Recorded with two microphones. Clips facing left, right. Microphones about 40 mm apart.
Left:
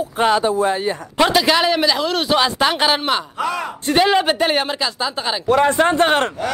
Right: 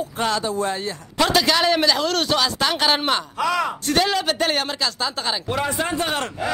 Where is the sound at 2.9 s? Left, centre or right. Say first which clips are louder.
Left 2 dB; centre.